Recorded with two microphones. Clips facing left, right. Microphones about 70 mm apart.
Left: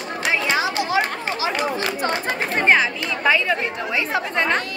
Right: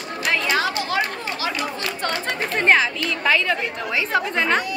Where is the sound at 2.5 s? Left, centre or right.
Centre.